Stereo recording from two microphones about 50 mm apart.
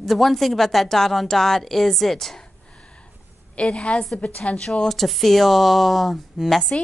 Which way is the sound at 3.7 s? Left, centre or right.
Left.